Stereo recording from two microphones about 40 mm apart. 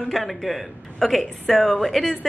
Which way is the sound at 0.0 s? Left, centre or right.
Centre.